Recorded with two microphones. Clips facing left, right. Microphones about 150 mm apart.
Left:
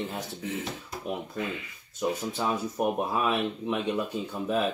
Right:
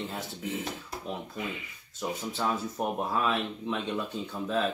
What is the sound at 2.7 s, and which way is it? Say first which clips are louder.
Speech: left 3 dB; 15° left (ahead or behind).